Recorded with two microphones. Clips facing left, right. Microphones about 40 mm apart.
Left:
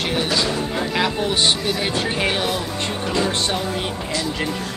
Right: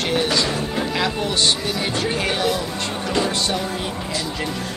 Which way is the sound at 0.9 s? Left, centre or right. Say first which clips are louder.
Left 3 dB; centre.